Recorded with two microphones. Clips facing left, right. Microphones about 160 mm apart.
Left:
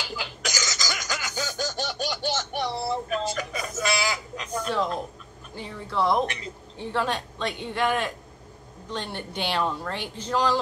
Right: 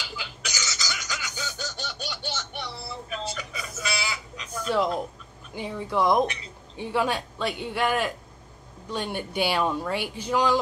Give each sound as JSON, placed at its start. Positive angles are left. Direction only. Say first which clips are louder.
{"t": 0.1, "sound": "laughter", "louder": "left 5 dB", "side_deg": 40}
{"t": 3.1, "sound": "a sound", "louder": "left 6 dB", "side_deg": 45}
{"t": 5.5, "sound": "speech", "louder": "right 5 dB", "side_deg": -15}